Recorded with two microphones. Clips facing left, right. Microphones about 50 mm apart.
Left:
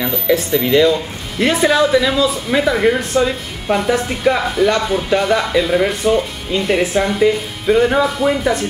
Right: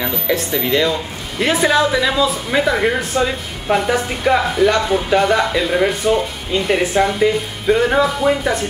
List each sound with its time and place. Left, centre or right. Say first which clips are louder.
0.0 s speech: left 3 dB; centre